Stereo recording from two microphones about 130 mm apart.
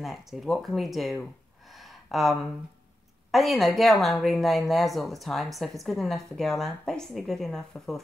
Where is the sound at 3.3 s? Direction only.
Centre (ahead or behind).